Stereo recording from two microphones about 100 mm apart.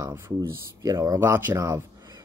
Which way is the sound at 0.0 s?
30° right (ahead or behind).